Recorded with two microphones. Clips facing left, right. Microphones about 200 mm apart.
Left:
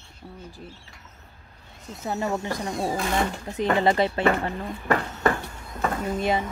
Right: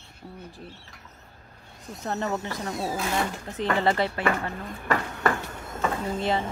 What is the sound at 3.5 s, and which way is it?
Speech, 15° left (ahead or behind).